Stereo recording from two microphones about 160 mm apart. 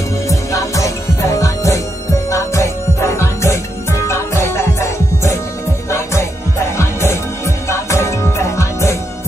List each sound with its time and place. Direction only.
0.3 s music: 20° left (ahead or behind)